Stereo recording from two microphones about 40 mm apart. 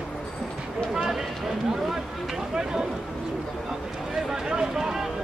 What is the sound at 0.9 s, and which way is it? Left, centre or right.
Run, centre.